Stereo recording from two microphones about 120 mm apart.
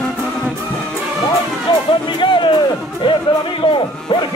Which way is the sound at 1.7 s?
40° left (ahead or behind).